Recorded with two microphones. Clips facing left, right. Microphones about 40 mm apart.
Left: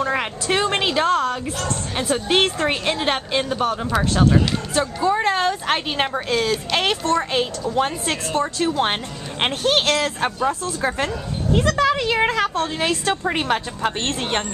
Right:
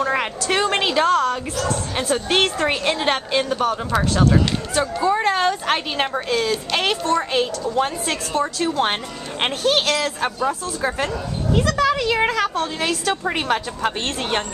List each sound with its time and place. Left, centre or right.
0.0 s a woman's voice: centre
2.0 s a woman's voice: centre
9.7 s a woman's voice: centre
13.1 s a woman's voice: centre